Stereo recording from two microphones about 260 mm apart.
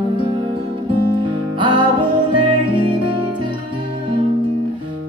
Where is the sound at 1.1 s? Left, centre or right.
Centre.